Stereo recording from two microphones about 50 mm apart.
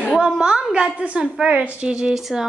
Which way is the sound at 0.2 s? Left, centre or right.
Centre.